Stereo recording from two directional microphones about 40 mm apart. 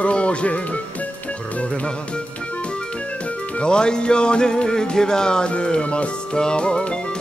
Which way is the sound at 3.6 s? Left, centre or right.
Left.